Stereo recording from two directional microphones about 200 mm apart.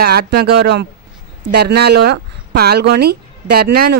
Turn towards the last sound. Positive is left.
turn(degrees=-50)  # may be behind; listen again after turning